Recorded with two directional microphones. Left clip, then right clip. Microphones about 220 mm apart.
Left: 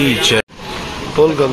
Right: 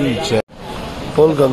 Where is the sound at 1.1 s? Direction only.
20° right (ahead or behind).